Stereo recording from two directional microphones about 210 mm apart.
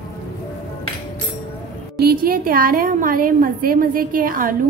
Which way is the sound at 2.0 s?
45° right (ahead or behind).